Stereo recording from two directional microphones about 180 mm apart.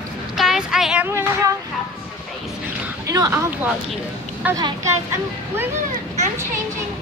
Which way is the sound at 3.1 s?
20° right (ahead or behind).